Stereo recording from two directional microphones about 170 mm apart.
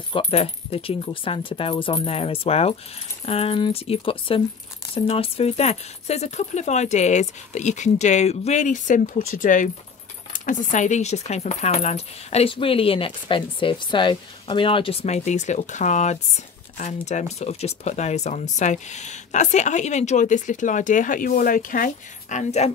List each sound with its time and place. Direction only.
0.1 s speech: 35° left (ahead or behind)